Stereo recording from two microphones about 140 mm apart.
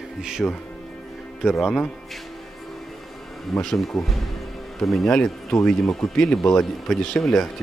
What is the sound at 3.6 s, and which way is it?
Speech, centre (ahead or behind).